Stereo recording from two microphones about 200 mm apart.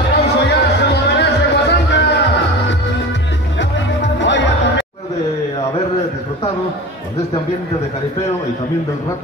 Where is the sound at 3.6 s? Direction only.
65° left (ahead or behind).